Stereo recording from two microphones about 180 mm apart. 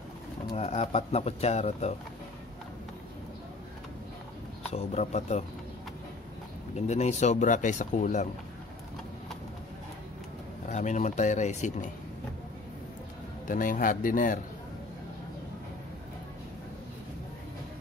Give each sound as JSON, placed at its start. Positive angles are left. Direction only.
{"t": 0.6, "sound": "speech", "side_deg": 35}
{"t": 4.7, "sound": "speech", "side_deg": 40}
{"t": 6.9, "sound": "speech", "side_deg": 40}
{"t": 10.7, "sound": "speech", "side_deg": 40}
{"t": 13.5, "sound": "speech", "side_deg": 50}